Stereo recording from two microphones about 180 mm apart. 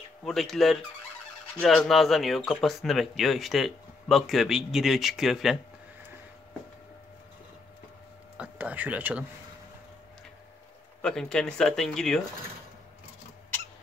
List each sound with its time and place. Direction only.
0.2 s speech: centre (ahead or behind)
8.4 s speech: 10° right (ahead or behind)
11.0 s speech: 5° left (ahead or behind)